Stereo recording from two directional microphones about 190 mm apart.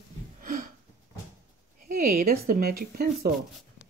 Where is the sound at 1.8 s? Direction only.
50° right (ahead or behind).